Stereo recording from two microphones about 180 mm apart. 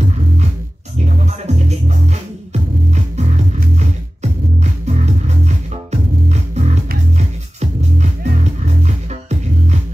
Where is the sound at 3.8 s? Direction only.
40° right (ahead or behind).